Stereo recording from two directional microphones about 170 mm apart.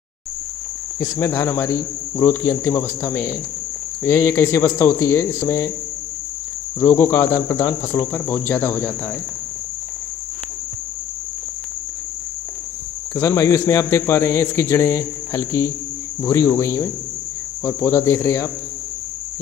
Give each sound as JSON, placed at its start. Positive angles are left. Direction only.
{"t": 0.9, "sound": "a man's voice", "side_deg": 15}
{"t": 6.8, "sound": "a man's voice", "side_deg": 15}
{"t": 13.1, "sound": "a man's voice", "side_deg": 20}